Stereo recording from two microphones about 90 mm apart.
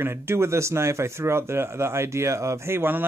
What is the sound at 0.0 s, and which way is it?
Speech, 25° right (ahead or behind).